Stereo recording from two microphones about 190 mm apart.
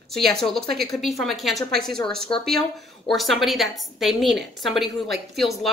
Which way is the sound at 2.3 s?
25° left (ahead or behind).